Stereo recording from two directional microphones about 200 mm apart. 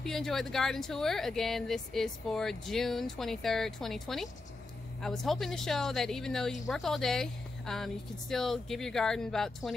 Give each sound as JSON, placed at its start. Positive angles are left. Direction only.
{"t": 0.0, "sound": "speech", "side_deg": 0}